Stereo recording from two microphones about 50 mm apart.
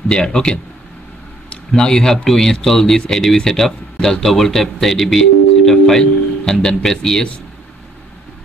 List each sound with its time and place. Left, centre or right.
0.1 s speech: centre
1.8 s speech: centre